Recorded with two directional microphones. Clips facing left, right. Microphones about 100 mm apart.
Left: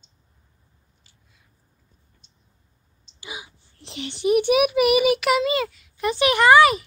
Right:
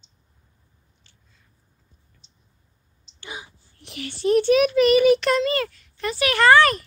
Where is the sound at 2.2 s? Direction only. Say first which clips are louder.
Even; 50° left (ahead or behind).